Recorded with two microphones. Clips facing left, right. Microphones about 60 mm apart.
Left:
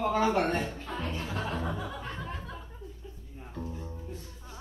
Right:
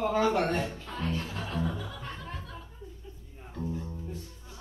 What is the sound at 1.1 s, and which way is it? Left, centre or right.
Music, centre.